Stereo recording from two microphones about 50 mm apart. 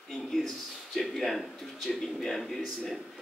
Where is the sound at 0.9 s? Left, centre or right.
Centre.